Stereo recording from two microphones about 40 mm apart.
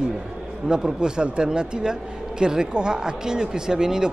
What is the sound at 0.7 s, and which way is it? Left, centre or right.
A man's voice, centre.